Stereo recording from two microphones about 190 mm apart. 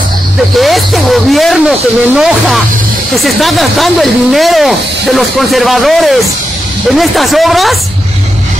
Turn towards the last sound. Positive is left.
turn(degrees=0)  # may be behind; listen again after turning